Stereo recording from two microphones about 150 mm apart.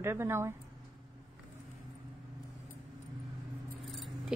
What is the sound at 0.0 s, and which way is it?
Speech, 15° right (ahead or behind).